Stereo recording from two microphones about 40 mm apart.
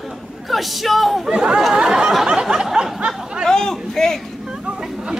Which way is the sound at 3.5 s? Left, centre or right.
Centre.